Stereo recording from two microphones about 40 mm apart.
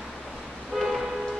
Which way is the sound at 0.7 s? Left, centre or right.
Centre.